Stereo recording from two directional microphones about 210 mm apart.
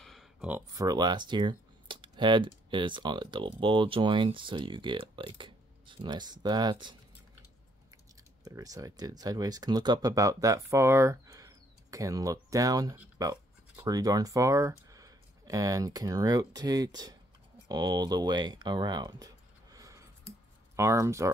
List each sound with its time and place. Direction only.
0.0 s speech: centre (ahead or behind); by 7.0 s 20° right (ahead or behind)
8.5 s speech: 15° right (ahead or behind)